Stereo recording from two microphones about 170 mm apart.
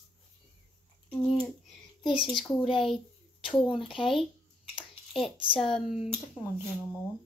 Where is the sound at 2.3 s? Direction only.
Centre (ahead or behind).